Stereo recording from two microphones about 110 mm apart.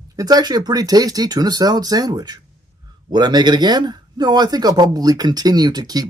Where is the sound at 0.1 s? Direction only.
35° right (ahead or behind).